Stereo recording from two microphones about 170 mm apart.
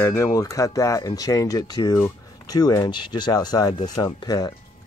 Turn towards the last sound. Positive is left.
turn(degrees=25)  # may be behind; listen again after turning